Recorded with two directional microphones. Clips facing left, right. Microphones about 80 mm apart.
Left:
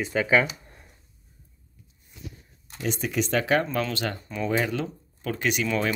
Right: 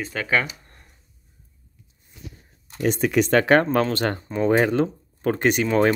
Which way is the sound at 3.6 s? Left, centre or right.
Right.